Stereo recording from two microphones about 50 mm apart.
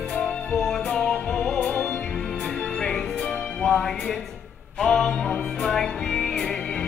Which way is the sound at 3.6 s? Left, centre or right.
Centre.